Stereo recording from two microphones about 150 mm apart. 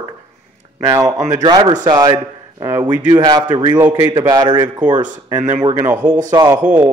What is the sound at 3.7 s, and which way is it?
Speech, 15° right (ahead or behind).